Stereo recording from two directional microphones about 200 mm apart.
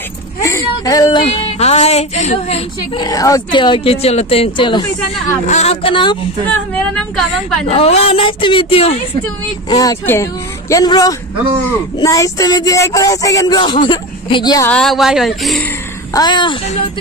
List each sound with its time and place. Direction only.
0.4 s speech: 15° left (ahead or behind)
6.4 s speech: 5° left (ahead or behind)
7.6 s speech: 30° left (ahead or behind)
9.7 s speech: 20° left (ahead or behind)
14.7 s speech: centre (ahead or behind)
16.1 s speech: 20° left (ahead or behind)